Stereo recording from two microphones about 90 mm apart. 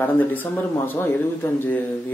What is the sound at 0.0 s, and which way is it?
Speech, 20° left (ahead or behind).